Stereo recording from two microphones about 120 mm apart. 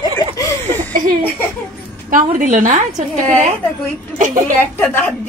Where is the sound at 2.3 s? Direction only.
90° right.